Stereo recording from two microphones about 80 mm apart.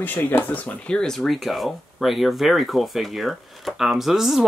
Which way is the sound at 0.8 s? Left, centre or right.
Centre.